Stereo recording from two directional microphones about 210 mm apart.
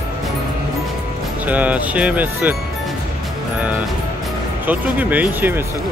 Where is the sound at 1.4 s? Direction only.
5° right (ahead or behind).